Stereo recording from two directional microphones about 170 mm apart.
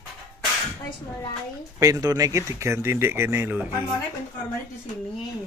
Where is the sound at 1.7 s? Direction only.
20° right (ahead or behind).